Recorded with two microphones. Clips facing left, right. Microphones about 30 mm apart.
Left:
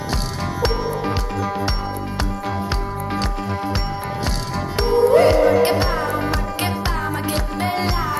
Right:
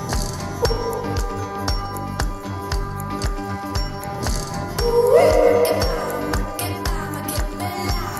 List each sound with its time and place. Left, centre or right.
1.0 s music: left
3.1 s music: left
4.7 s music: left